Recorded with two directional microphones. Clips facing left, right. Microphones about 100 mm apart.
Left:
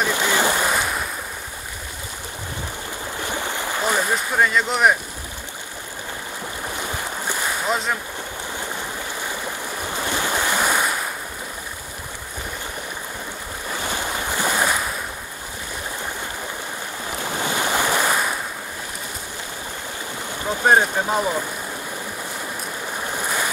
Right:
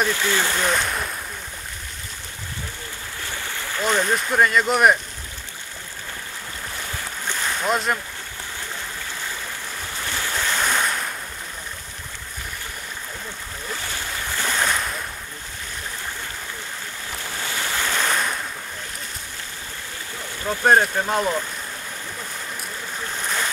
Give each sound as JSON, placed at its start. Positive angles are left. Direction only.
{"t": 0.1, "sound": "speech", "side_deg": 15}
{"t": 3.2, "sound": "speech", "side_deg": 20}
{"t": 6.7, "sound": "boat", "side_deg": 15}
{"t": 7.7, "sound": "speech", "side_deg": 0}
{"t": 9.2, "sound": "waves", "side_deg": 15}
{"t": 13.7, "sound": "waves", "side_deg": 15}
{"t": 17.2, "sound": "waves", "side_deg": 15}
{"t": 20.4, "sound": "speech", "side_deg": 5}
{"t": 23.1, "sound": "boat", "side_deg": 10}